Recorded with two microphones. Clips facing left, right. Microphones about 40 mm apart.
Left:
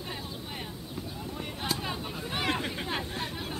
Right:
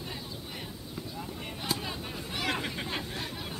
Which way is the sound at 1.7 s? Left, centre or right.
Centre.